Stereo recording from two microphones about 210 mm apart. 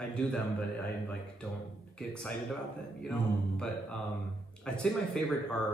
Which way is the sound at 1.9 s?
5° left (ahead or behind).